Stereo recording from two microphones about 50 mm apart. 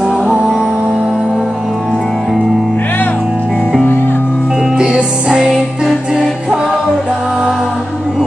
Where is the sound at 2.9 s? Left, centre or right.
Left.